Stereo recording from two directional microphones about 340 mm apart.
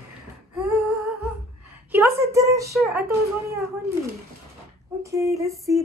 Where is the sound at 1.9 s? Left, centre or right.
Centre.